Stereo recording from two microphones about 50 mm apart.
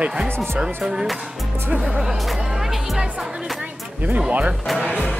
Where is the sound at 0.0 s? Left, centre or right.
Right.